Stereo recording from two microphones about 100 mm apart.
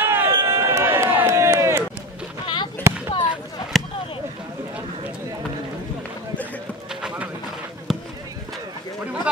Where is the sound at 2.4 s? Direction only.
50° left (ahead or behind).